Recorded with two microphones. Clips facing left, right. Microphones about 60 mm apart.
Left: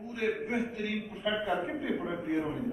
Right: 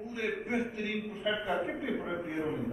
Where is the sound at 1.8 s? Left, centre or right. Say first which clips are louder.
Left 1 dB; centre.